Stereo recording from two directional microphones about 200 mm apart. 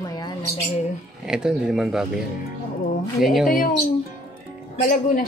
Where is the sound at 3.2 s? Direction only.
Centre (ahead or behind).